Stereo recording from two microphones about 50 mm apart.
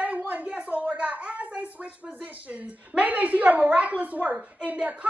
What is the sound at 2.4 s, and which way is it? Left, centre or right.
A woman's voice, right.